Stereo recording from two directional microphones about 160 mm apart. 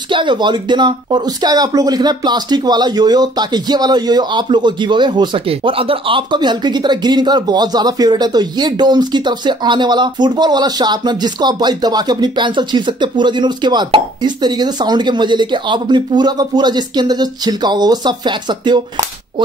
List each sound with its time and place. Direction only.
0.1 s speech: 30° right (ahead or behind)